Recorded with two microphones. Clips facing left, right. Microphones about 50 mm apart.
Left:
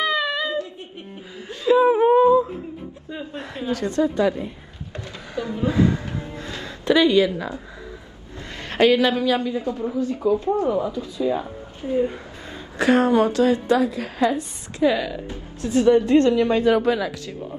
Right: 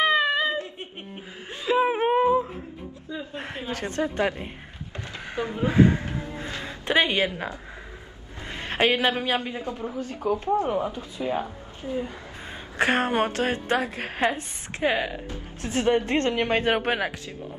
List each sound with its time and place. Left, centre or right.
0.0 s a sound: right
1.5 s whimper: centre
1.8 s wail: right
3.3 s speech: right
4.9 s a sound: right
8.5 s a man's voice: right
11.8 s speech: left
12.4 s a woman's voice: right